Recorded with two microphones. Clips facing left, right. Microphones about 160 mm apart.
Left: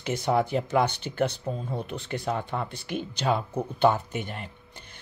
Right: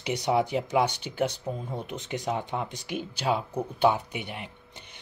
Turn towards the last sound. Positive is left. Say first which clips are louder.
# left 1 dB
turn(degrees=-10)  # may be behind; listen again after turning